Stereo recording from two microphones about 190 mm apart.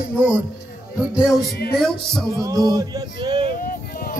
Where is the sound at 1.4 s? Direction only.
55° left (ahead or behind).